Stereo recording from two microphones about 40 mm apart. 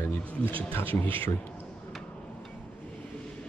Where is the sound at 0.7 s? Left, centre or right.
Left.